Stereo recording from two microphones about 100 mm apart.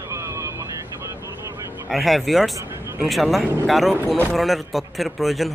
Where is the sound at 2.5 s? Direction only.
25° right (ahead or behind).